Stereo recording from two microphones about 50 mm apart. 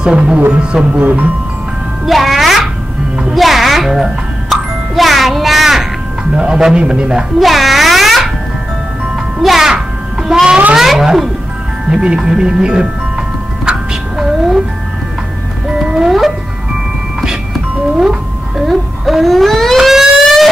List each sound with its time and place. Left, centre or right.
0.0 s speech: centre
0.9 s speech: right
2.0 s music: centre
6.3 s speech: centre
7.3 s music: centre
9.4 s speech: centre
13.7 s music: centre
15.8 s music: centre
18.7 s siren: centre